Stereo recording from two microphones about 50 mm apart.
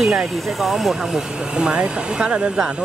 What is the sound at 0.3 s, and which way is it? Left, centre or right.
Speech, centre.